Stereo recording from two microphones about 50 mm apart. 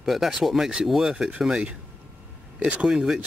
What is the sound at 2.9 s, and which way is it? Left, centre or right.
Speech, centre.